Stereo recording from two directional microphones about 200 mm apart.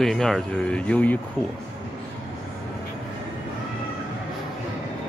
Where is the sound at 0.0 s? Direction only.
Centre (ahead or behind).